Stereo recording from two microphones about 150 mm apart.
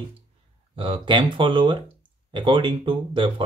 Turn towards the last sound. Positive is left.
turn(degrees=-35)  # may be behind; listen again after turning